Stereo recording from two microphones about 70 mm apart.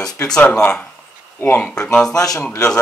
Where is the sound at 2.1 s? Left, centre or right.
Left.